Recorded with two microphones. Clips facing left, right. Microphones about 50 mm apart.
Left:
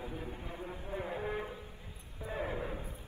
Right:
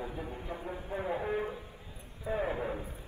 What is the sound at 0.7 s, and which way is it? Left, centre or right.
Clip-clop, centre.